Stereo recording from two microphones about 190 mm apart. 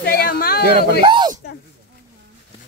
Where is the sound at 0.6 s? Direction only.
60° right (ahead or behind).